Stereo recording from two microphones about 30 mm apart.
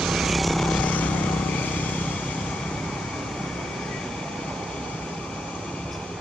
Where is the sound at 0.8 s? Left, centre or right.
Left.